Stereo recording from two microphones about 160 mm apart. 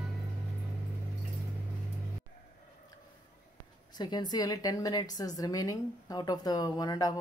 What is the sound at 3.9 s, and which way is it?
A woman's voice, 25° left (ahead or behind).